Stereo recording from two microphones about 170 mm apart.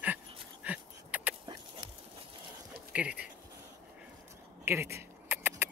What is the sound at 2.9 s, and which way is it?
Speech, 5° right (ahead or behind).